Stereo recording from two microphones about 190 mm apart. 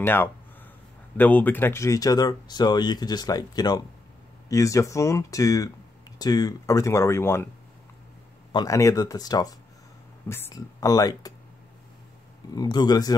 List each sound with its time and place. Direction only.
0.0 s speech: 10° left (ahead or behind)
8.5 s speech: 20° left (ahead or behind)
12.5 s speech: 20° left (ahead or behind)